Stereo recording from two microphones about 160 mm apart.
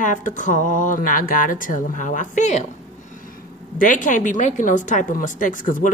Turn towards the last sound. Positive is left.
turn(degrees=55)  # may be behind; listen again after turning